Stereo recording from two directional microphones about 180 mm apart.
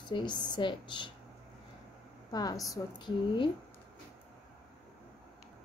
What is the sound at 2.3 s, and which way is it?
Speech, 20° left (ahead or behind).